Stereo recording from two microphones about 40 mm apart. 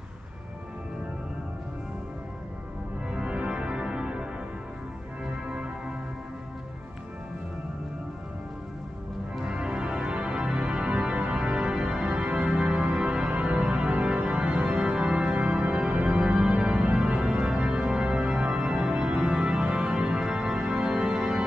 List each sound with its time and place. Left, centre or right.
3.1 s organ: right
5.5 s music: right
9.4 s organ: right
19.6 s music: right